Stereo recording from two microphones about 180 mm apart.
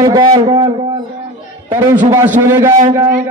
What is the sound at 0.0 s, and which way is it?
Speech, 20° right (ahead or behind).